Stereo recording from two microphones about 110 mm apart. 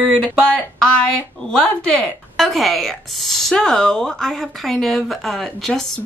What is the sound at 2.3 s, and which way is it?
A woman's voice, centre (ahead or behind).